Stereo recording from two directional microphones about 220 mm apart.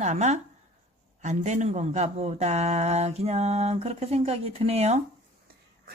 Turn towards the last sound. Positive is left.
turn(degrees=-30)  # may be behind; listen again after turning